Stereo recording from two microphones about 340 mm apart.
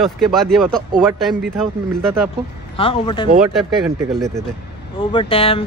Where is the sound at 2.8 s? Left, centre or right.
Centre.